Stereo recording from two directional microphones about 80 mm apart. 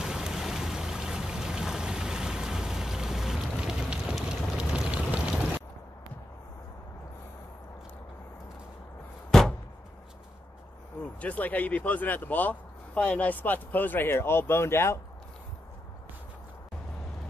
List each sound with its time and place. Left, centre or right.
0.0 s a sound: centre
4.1 s vehicle: centre
11.1 s speech: centre